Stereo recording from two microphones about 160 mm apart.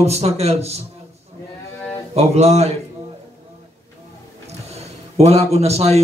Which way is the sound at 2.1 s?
40° right (ahead or behind).